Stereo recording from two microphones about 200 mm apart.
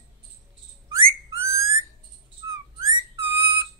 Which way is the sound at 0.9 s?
15° right (ahead or behind).